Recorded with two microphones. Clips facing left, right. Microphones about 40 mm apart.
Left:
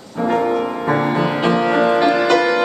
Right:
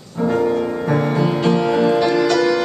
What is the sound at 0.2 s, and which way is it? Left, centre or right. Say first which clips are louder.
Music: even; left.